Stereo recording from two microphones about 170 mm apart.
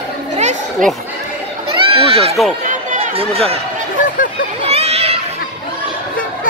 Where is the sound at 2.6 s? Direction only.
40° right (ahead or behind).